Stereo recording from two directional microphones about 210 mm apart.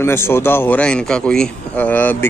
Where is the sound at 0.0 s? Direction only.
10° left (ahead or behind).